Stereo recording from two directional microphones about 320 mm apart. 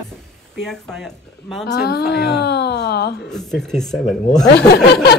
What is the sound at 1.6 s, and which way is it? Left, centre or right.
Speech, left.